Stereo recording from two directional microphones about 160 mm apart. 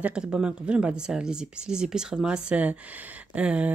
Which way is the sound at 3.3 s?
5° right (ahead or behind).